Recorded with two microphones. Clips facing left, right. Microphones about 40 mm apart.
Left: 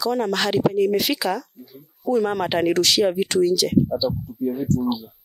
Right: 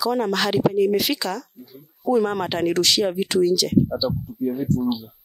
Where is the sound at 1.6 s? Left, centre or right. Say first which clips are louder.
Right 3 dB; centre.